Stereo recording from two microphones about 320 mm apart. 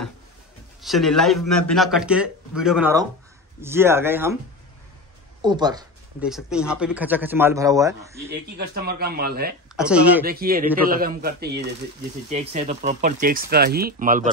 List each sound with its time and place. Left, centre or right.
0.8 s a man's voice: centre
5.4 s speech: centre
6.2 s a man's voice: centre
8.5 s speech: right
9.8 s a man's voice: centre
10.2 s speech: right